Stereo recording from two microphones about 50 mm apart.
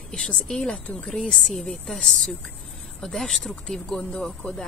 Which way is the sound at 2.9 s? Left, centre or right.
Centre.